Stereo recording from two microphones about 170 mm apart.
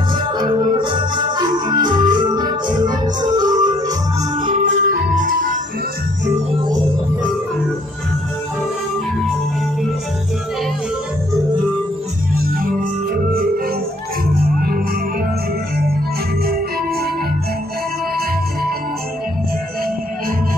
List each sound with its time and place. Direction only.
0.4 s organ: 25° right (ahead or behind)
4.4 s music: 50° right (ahead or behind)
12.4 s organ: 60° right (ahead or behind)